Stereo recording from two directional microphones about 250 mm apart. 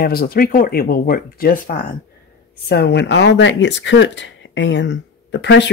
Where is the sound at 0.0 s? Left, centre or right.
Left.